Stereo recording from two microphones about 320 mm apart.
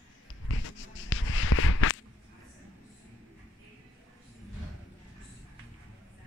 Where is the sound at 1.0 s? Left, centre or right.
Left.